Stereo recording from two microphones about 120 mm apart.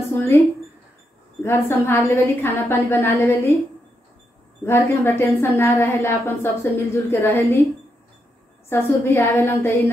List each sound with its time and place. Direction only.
0.1 s a sound: 20° left (ahead or behind)
1.4 s a woman's voice: 20° left (ahead or behind)
4.6 s a woman's voice: 20° left (ahead or behind)
8.6 s a woman's voice: 20° left (ahead or behind)